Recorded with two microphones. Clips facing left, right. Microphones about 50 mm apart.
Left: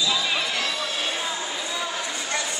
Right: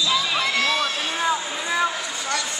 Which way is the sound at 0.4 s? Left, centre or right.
Right.